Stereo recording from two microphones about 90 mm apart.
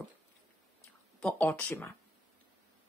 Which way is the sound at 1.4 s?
20° left (ahead or behind).